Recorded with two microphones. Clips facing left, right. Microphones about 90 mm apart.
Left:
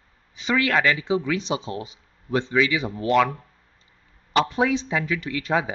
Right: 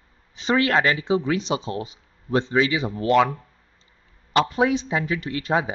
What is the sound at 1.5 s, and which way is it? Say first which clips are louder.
Speech: right 2 dB; 20° left (ahead or behind).